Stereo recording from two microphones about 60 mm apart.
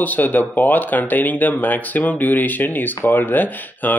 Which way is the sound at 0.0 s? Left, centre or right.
Left.